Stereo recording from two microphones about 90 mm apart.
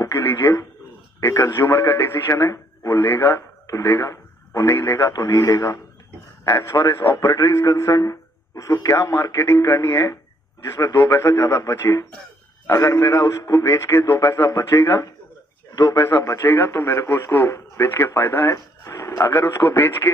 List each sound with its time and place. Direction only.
0.0 s a man's voice: 25° left (ahead or behind)
5.1 s a man's voice: 40° left (ahead or behind)